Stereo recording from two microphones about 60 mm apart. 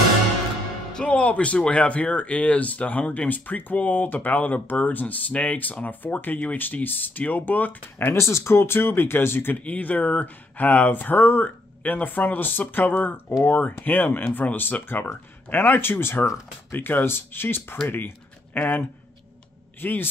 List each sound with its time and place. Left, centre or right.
0.9 s speech: centre; by 8.2 s left
8.2 s speech: left
9.6 s speech: left